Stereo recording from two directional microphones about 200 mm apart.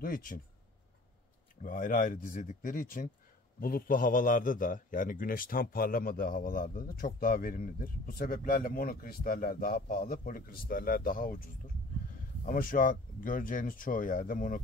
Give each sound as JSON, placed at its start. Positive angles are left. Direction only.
{"t": 0.0, "sound": "a man's voice", "side_deg": 45}
{"t": 1.6, "sound": "a man's voice", "side_deg": 40}